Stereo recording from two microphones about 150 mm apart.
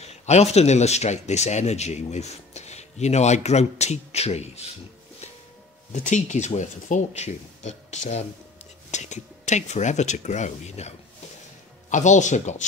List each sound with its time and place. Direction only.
0.0 s speech: 45° left (ahead or behind)
6.0 s speech: 55° left (ahead or behind)